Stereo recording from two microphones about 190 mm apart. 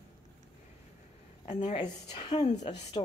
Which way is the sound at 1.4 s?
35° left (ahead or behind).